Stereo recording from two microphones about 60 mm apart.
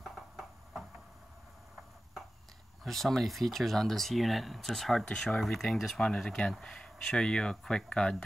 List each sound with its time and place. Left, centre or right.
2.8 s speech: centre
5.0 s speech: centre
5.4 s speech: centre